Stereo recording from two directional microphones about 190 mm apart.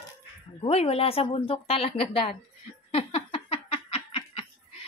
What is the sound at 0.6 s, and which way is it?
Speech, 30° left (ahead or behind).